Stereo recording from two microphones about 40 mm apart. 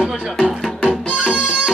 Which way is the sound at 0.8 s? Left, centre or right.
Right.